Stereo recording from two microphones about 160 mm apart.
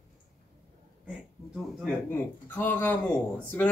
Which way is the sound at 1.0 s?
5° right (ahead or behind).